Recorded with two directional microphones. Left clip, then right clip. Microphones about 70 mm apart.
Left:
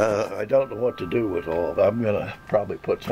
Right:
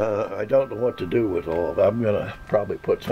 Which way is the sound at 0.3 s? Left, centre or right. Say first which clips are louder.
Right 1 dB; centre.